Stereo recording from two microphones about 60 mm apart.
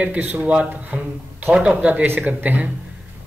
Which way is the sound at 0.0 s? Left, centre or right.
Right.